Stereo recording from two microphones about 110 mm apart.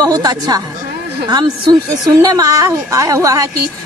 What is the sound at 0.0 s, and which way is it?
A woman's voice, 35° right (ahead or behind).